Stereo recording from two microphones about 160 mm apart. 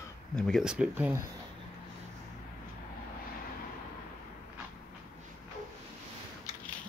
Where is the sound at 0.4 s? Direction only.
Centre (ahead or behind).